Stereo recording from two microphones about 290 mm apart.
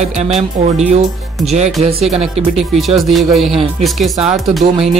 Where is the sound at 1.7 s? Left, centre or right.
Centre.